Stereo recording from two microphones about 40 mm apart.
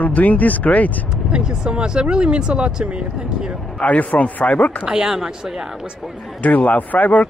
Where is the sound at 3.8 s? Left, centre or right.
Left.